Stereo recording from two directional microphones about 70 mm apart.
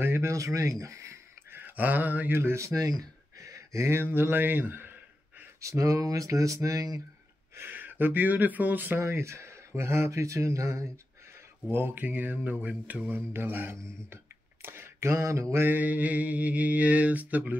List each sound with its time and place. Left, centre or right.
0.0 s speech: right
0.3 s a sound: right
1.6 s speech: right
5.6 s speech: right
7.5 s speech: right
9.0 s speech: right
11.7 s mantra: right
13.1 s speech: right
14.1 s a sound: right
15.5 s mantra: right